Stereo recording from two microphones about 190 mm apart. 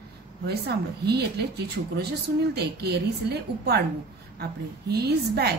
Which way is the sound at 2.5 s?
60° right (ahead or behind).